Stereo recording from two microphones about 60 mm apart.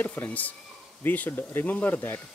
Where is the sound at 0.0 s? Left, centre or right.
Left.